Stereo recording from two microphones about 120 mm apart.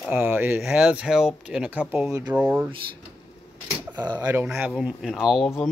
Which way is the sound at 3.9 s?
35° right (ahead or behind).